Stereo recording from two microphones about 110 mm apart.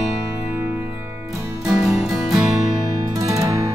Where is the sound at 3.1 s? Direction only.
30° right (ahead or behind).